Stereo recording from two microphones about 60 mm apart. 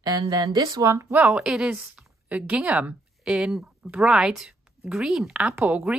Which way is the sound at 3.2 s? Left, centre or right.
Centre.